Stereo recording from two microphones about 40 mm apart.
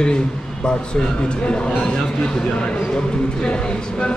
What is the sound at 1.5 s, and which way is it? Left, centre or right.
Speech, left.